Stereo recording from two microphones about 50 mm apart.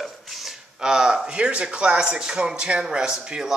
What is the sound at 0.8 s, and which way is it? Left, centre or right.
Speech, centre.